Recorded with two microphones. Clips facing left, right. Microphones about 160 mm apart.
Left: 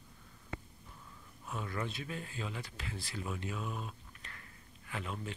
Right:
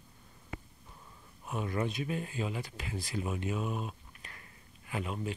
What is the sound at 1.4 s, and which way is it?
Speech, 20° right (ahead or behind).